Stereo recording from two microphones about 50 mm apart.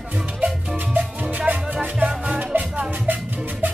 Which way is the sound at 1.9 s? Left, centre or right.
Right.